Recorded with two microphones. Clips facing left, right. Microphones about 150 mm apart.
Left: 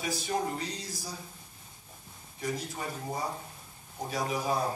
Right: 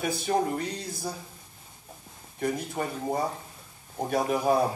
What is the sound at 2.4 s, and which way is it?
Speech, 55° right (ahead or behind).